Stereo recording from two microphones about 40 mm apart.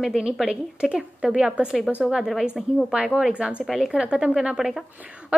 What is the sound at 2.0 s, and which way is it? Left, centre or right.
A woman's voice, centre.